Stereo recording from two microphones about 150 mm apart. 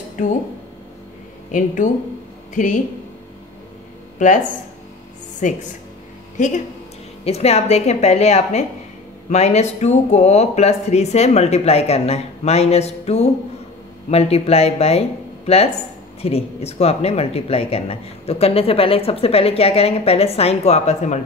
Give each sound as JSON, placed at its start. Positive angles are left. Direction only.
{"t": 2.5, "sound": "a woman's voice", "side_deg": 55}
{"t": 5.4, "sound": "a woman's voice", "side_deg": 55}
{"t": 7.2, "sound": "speech", "side_deg": 45}